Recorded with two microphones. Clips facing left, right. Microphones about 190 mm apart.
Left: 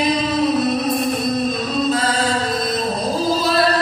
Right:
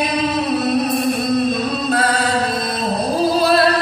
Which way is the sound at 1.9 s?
60° right (ahead or behind).